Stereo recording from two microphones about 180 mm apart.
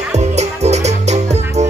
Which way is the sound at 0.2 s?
40° right (ahead or behind).